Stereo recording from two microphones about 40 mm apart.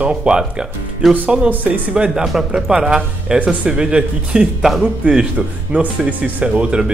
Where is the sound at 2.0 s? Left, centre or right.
Centre.